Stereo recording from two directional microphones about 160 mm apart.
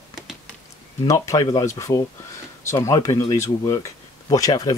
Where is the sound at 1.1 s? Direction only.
20° left (ahead or behind).